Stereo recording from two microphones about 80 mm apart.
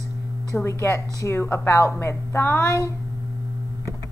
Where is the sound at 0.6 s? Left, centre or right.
Left.